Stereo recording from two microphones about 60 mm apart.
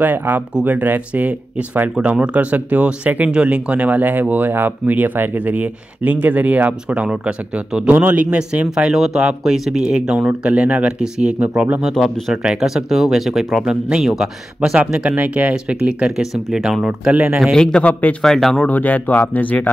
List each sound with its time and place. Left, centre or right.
0.0 s speech: right
6.9 s speech: centre
8.7 s speech: centre
11.3 s speech: right
11.9 s speech: centre
15.1 s speech: right
17.6 s speech: centre
18.7 s speech: left